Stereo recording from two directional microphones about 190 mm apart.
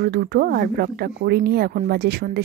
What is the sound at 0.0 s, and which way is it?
Speech, 60° right (ahead or behind).